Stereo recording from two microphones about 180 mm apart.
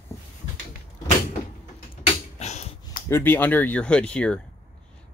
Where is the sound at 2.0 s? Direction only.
40° left (ahead or behind).